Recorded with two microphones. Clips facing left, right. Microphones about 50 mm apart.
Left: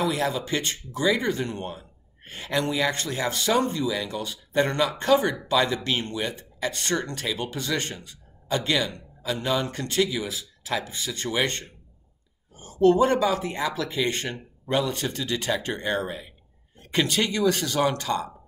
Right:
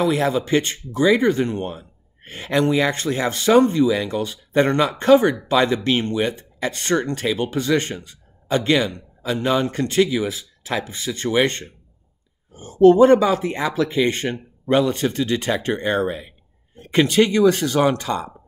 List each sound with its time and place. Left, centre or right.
0.0 s speech: right